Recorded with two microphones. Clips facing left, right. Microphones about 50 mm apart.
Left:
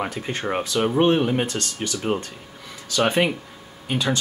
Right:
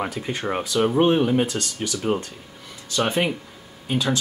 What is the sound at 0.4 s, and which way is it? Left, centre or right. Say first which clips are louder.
Speech: right 1 dB; centre.